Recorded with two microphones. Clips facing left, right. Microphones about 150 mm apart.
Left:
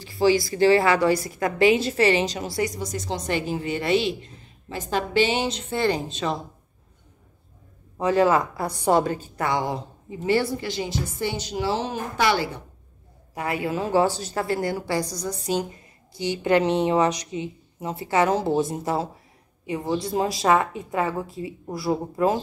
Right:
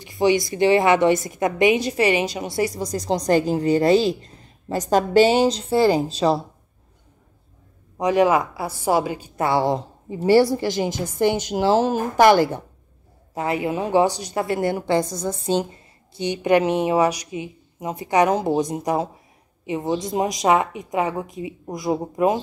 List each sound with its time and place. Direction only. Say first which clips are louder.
0.0 s a woman's voice: right 1 dB; 20° right (ahead or behind)
2.5 s a woman's voice: right 3 dB; 30° right (ahead or behind)
8.0 s a woman's voice: right 2 dB; 15° right (ahead or behind)
9.4 s a woman's voice: right 6 dB; 30° right (ahead or behind)
11.1 s a woman's voice: right 10 dB; 55° right (ahead or behind)
13.3 s a woman's voice: right 3 dB; 25° right (ahead or behind)